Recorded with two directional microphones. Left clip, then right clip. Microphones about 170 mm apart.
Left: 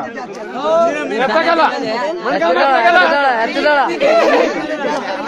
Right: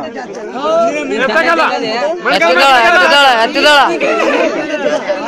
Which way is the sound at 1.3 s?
40° left (ahead or behind).